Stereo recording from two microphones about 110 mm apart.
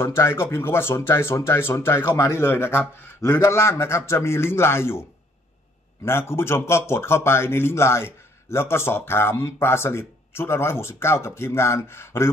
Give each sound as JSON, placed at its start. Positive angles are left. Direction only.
{"t": 0.0, "sound": "speech", "side_deg": 20}
{"t": 6.0, "sound": "speech", "side_deg": 20}